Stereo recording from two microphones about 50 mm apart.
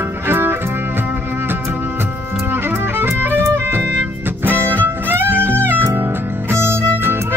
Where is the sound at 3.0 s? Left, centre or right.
Right.